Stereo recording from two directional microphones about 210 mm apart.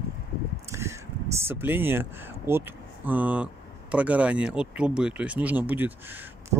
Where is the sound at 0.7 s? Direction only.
15° right (ahead or behind).